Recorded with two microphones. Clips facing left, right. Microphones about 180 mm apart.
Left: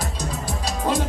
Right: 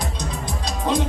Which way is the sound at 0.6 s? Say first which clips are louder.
Right 1 dB; 5° left (ahead or behind).